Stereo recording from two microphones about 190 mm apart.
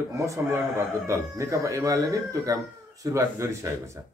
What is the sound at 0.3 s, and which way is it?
Speech, 15° right (ahead or behind).